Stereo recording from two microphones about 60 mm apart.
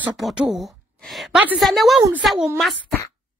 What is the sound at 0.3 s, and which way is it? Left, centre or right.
Speech, centre.